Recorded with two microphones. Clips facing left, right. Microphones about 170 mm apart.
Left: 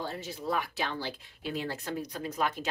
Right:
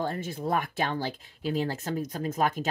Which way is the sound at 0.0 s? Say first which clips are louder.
Right 5 dB; 50° right (ahead or behind).